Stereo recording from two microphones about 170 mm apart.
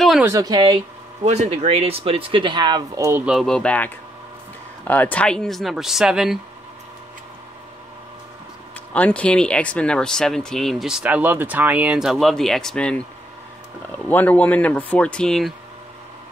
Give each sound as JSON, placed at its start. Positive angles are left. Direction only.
{"t": 0.2, "sound": "speech", "side_deg": -20}
{"t": 1.2, "sound": "speech", "side_deg": -40}
{"t": 3.3, "sound": "speech", "side_deg": 0}
{"t": 8.9, "sound": "speech", "side_deg": 10}